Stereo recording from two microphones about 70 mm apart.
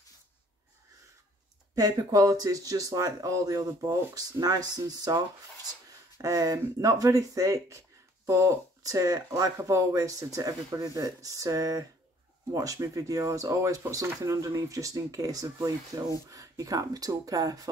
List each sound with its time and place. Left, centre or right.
1.8 s speech: right
6.2 s speech: right